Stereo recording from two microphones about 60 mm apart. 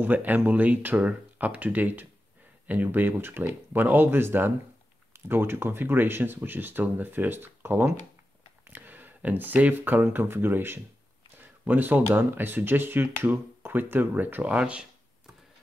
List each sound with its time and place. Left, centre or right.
0.0 s speech: right
14.5 s speech: centre